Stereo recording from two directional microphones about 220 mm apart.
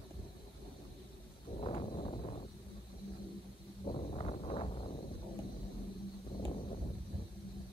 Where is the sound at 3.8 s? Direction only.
20° left (ahead or behind).